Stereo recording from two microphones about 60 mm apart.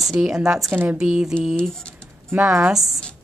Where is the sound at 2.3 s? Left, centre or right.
Right.